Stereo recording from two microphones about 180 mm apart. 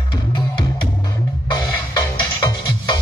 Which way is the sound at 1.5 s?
25° left (ahead or behind).